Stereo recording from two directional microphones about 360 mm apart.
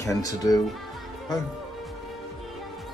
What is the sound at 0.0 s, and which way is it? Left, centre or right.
Speech, centre.